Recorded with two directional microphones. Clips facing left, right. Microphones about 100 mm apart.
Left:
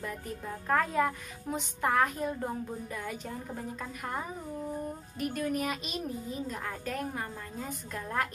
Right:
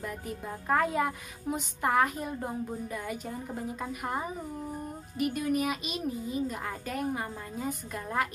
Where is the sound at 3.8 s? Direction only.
15° right (ahead or behind).